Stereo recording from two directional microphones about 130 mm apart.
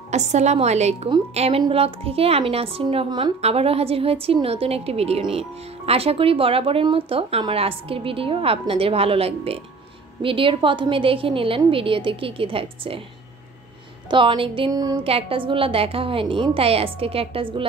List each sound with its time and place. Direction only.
0.1 s a woman's voice: 60° right (ahead or behind)
3.1 s speech: 35° right (ahead or behind)
3.3 s speech: 50° right (ahead or behind)
14.1 s speech: 40° right (ahead or behind)
14.7 s music: 30° right (ahead or behind)
15.0 s speech: 45° right (ahead or behind)